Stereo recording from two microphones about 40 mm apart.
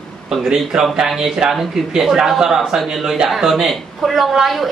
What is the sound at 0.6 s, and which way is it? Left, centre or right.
A woman's voice, centre.